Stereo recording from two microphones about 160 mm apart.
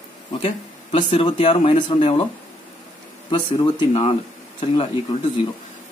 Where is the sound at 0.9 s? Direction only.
30° left (ahead or behind).